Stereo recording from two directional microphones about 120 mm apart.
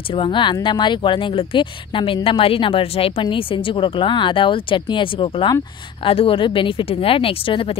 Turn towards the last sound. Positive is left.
turn(degrees=50)  # may be behind; listen again after turning